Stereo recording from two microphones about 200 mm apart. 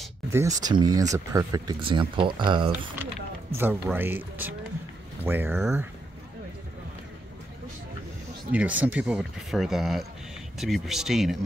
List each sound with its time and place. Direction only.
0.3 s speech: 15° right (ahead or behind)
3.5 s speech: 10° right (ahead or behind)
8.5 s speech: 5° right (ahead or behind)